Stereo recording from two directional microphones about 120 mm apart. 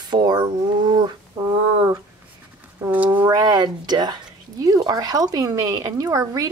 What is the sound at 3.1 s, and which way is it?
Speech, 35° right (ahead or behind).